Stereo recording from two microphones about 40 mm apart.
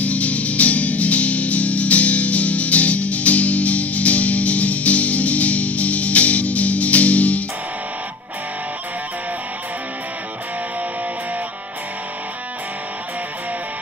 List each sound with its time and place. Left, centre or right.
0.0 s music: left